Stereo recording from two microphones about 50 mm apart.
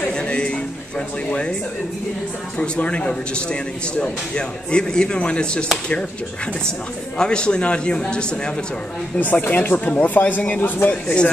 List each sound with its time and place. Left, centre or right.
0.1 s a sound: left
2.6 s a man's voice: left
7.2 s a man's voice: centre
9.2 s speech: left